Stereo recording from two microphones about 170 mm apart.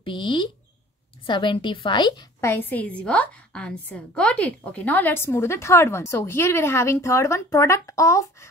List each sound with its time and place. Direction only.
0.0 s a woman's voice: 30° left (ahead or behind)
2.5 s a woman's voice: 10° left (ahead or behind)